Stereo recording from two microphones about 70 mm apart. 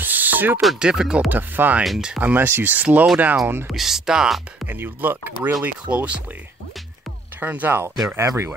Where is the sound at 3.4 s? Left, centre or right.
Right.